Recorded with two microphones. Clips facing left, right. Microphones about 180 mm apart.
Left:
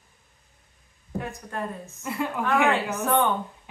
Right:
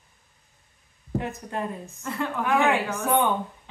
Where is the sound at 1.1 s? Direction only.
20° right (ahead or behind).